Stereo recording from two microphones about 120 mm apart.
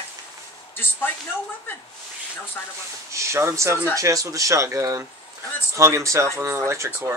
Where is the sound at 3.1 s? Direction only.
25° right (ahead or behind).